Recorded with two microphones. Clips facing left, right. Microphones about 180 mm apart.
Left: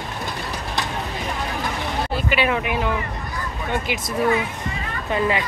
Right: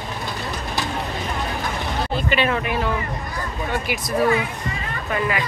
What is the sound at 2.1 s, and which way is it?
Speech, 10° left (ahead or behind).